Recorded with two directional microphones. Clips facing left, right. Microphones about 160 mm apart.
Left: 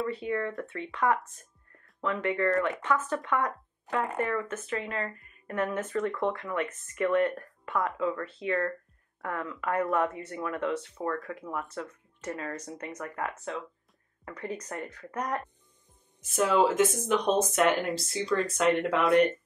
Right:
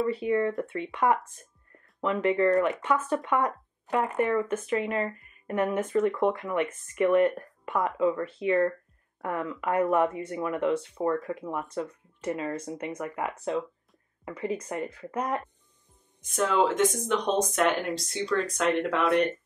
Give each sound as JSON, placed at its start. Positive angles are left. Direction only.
{"t": 0.1, "sound": "speech", "side_deg": -15}
{"t": 16.2, "sound": "speech", "side_deg": 5}